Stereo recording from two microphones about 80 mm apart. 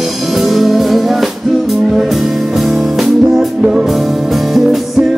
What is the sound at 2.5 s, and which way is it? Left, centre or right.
Music, centre.